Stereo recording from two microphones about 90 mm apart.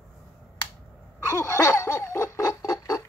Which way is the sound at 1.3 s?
30° left (ahead or behind).